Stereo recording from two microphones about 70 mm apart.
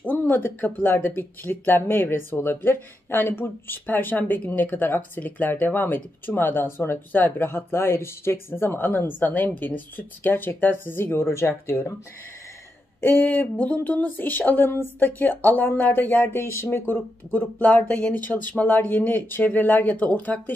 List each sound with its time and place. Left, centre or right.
0.0 s a woman's voice: left
13.0 s speech: left